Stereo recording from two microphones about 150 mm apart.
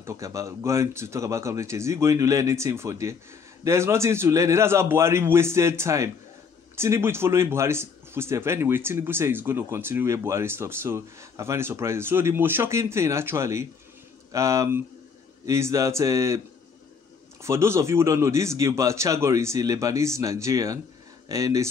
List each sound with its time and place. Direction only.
0.0 s a man's voice: 20° right (ahead or behind)
17.4 s speech: 15° right (ahead or behind)